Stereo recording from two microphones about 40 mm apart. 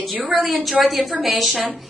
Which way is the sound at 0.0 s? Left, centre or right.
Centre.